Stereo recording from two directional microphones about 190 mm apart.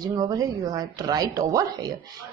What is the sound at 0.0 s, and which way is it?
Speech, 20° right (ahead or behind).